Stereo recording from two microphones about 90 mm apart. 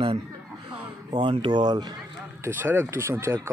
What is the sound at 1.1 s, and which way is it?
Speech, 70° right (ahead or behind).